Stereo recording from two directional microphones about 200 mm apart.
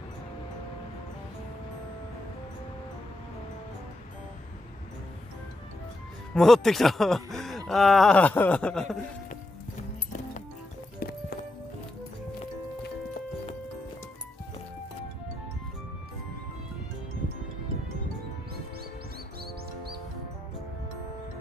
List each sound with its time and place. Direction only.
6.3 s speech: centre (ahead or behind)
11.0 s clip-clop: 50° left (ahead or behind)